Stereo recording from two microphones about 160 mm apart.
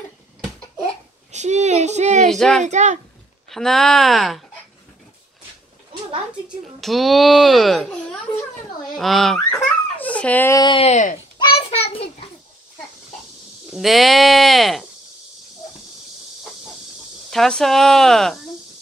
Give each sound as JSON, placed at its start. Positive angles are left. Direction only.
{"t": 1.3, "sound": "speech", "side_deg": -45}
{"t": 2.2, "sound": "speech", "side_deg": 5}
{"t": 2.6, "sound": "speech", "side_deg": -45}
{"t": 3.4, "sound": "a child's voice", "side_deg": 0}
{"t": 6.8, "sound": "a child's voice", "side_deg": 0}
{"t": 10.8, "sound": "speech", "side_deg": 45}
{"t": 11.3, "sound": "a sound", "side_deg": 35}
{"t": 13.7, "sound": "a child's voice", "side_deg": 0}
{"t": 17.3, "sound": "a child's voice", "side_deg": 0}